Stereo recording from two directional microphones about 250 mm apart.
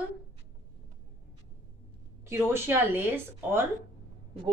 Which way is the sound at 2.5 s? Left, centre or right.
Centre.